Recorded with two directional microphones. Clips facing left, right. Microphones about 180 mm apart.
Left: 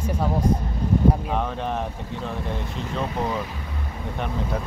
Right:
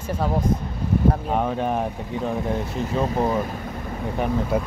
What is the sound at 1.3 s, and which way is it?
Speech, 10° right (ahead or behind).